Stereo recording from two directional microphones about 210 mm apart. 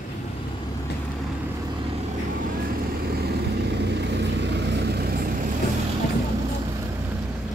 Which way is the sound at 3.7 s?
55° right (ahead or behind).